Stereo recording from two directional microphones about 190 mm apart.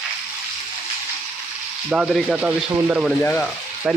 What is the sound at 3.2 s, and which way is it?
Frying, 10° left (ahead or behind).